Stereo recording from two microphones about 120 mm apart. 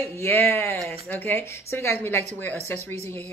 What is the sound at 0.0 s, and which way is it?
Speech, 20° left (ahead or behind).